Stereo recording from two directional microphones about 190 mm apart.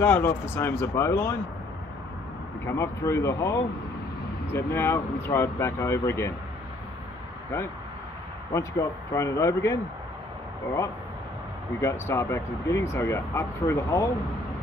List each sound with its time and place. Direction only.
0.0 s speech: 10° left (ahead or behind)
2.6 s speech: 15° left (ahead or behind)
8.5 s speech: 15° left (ahead or behind)
11.8 s speech: 15° left (ahead or behind)